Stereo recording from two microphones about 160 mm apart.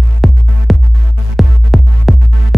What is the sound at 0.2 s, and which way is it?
Music, centre (ahead or behind).